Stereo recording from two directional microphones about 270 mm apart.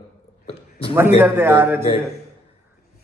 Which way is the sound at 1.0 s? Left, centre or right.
Centre.